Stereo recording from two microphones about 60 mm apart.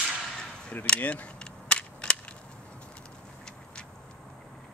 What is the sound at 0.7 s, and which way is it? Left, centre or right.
Cap gun, left.